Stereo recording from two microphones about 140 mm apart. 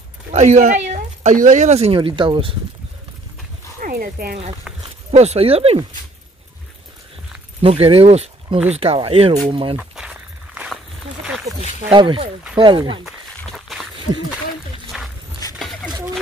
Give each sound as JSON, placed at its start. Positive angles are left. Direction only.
{"t": 0.3, "sound": "speech", "side_deg": -55}
{"t": 2.0, "sound": "speech", "side_deg": -35}
{"t": 3.8, "sound": "speech", "side_deg": -90}
{"t": 4.7, "sound": "a sound", "side_deg": 0}
{"t": 5.1, "sound": "speech", "side_deg": -50}
{"t": 7.6, "sound": "speech", "side_deg": -40}
{"t": 9.9, "sound": "walk", "side_deg": -5}
{"t": 11.9, "sound": "speech", "side_deg": -35}
{"t": 13.7, "sound": "a sound", "side_deg": 0}
{"t": 14.9, "sound": "a sound", "side_deg": -5}